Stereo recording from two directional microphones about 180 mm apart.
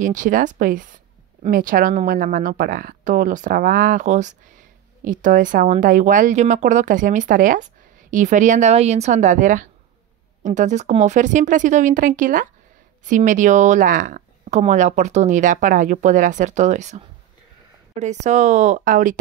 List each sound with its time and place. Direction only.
0.0 s a woman's voice: 45° right (ahead or behind)